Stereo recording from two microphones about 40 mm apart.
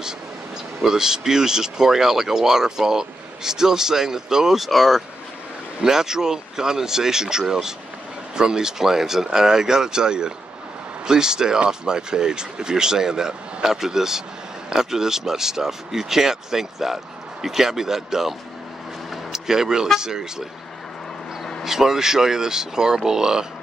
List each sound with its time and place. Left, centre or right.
0.8 s speech: centre
19.3 s speech: centre
21.6 s speech: centre